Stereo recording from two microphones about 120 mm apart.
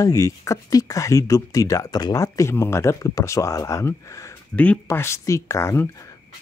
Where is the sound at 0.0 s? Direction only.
25° left (ahead or behind).